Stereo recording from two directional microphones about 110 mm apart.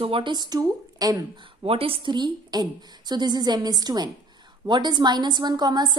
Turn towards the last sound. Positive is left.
turn(degrees=-40)  # may be behind; listen again after turning